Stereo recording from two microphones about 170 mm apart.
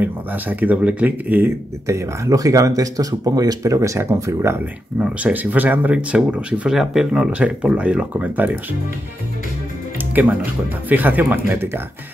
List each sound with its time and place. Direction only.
0.0 s speech: 10° right (ahead or behind)
9.9 s speech: 10° right (ahead or behind)